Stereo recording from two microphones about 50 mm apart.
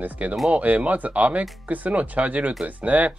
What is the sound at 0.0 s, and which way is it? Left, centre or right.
Speech, right.